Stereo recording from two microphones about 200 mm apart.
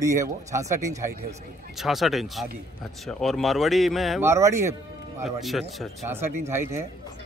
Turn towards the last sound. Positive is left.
turn(degrees=-15)  # may be behind; listen again after turning